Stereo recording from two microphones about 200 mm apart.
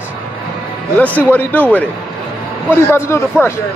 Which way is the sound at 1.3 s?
5° left (ahead or behind).